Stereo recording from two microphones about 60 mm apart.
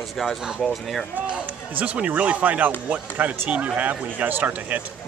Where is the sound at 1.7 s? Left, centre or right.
Right.